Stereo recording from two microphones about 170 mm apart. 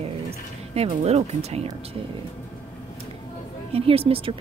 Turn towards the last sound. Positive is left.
turn(degrees=-35)  # may be behind; listen again after turning